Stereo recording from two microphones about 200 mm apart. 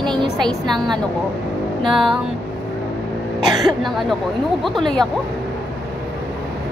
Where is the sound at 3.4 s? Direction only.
20° right (ahead or behind).